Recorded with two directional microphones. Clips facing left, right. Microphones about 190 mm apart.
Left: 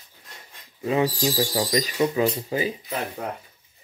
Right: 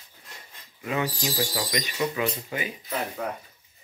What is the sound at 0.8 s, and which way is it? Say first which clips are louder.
Speech: left 6 dB; 30° left (ahead or behind).